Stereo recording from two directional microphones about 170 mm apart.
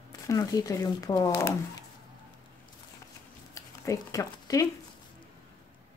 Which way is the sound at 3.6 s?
20° left (ahead or behind).